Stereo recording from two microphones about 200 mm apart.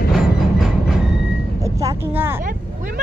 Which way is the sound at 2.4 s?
45° right (ahead or behind).